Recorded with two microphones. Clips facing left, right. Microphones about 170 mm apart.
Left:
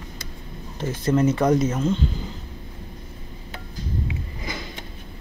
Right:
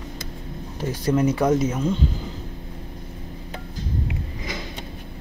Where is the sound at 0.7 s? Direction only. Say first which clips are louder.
Even; 10° right (ahead or behind).